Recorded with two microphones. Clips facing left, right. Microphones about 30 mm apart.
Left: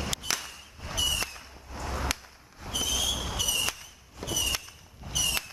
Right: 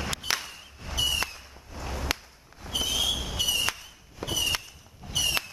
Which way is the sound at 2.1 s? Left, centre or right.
Centre.